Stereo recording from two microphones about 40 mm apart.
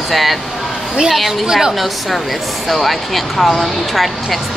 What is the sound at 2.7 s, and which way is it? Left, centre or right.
Speech, centre.